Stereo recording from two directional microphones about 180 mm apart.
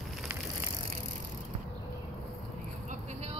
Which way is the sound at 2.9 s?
40° right (ahead or behind).